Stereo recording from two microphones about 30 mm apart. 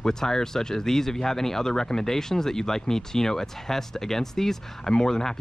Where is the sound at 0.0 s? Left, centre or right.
Centre.